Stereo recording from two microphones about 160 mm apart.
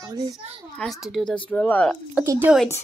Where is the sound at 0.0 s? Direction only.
25° right (ahead or behind).